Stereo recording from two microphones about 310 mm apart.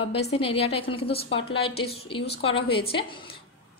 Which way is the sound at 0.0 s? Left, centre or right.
Centre.